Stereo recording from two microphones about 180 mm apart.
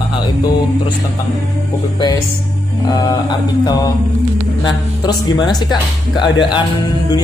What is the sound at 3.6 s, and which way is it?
A man's voice, 20° left (ahead or behind).